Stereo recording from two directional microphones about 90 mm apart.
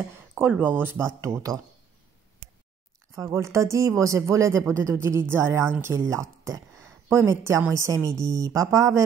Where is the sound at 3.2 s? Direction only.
35° right (ahead or behind).